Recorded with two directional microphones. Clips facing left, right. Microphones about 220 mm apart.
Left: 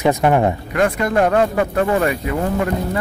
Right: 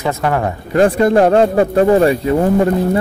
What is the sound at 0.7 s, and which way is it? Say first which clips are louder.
Speech: right 7 dB; 30° right (ahead or behind).